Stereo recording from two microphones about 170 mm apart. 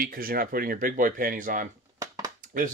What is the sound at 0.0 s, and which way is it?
Speech, 60° right (ahead or behind).